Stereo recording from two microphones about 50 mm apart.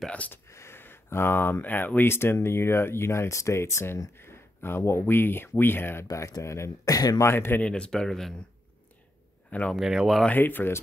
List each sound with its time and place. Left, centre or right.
0.5 s a sound: left
0.7 s speech: left
2.0 s speech: left
2.3 s speech: left
3.8 s speech: left
6.1 s speech: left
7.3 s speech: left
7.6 s speech: centre
9.8 s speech: centre
10.3 s speech: left